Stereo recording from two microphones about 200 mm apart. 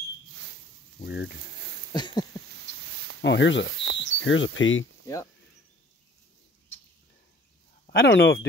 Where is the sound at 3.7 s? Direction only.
60° right (ahead or behind).